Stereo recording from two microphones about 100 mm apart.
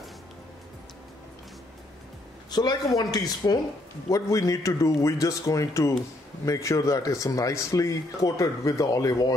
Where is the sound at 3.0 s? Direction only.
40° left (ahead or behind).